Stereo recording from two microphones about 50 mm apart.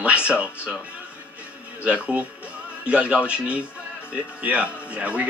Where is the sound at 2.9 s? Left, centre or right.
Right.